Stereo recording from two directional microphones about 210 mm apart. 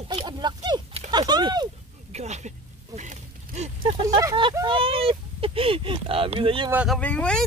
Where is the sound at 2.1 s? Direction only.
30° right (ahead or behind).